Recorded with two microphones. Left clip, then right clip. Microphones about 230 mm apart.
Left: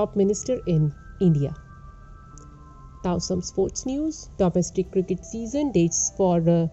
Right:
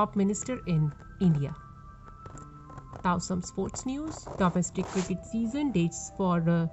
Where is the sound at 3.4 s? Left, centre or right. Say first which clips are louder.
Left 10 dB; right.